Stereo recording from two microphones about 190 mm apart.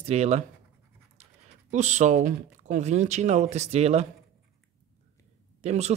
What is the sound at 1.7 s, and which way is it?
Speech, 40° right (ahead or behind).